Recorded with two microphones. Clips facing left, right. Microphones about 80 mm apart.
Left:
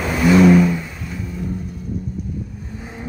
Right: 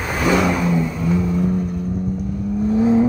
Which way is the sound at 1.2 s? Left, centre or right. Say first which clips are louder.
Right 6 dB; right.